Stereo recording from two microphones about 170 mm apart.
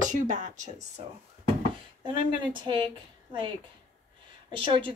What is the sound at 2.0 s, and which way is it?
Speech, 30° right (ahead or behind).